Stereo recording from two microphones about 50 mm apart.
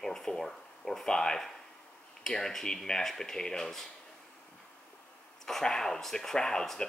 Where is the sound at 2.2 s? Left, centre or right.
Centre.